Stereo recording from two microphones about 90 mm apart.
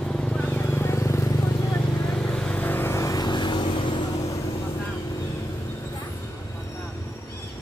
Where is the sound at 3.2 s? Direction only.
60° left (ahead or behind).